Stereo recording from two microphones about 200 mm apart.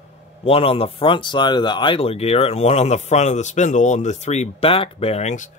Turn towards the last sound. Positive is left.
turn(degrees=35)  # may be behind; listen again after turning